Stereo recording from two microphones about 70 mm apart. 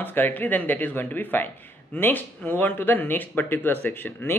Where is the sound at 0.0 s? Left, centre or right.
Left.